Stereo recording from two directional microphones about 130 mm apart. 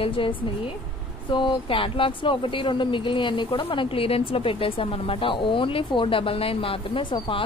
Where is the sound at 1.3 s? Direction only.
40° left (ahead or behind).